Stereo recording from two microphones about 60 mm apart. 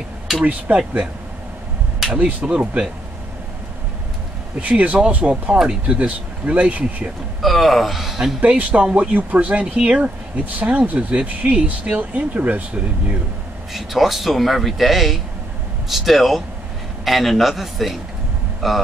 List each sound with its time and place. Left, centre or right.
0.5 s speech: right
2.0 s speech: right
4.6 s speech: right
7.4 s speech: centre
8.4 s speech: right
13.7 s speech: centre